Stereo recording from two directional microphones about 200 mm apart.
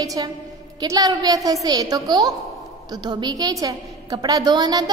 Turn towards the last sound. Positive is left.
turn(degrees=-20)  # may be behind; listen again after turning